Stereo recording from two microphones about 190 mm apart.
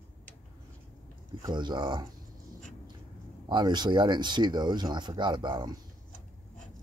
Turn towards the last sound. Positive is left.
turn(degrees=-25)  # may be behind; listen again after turning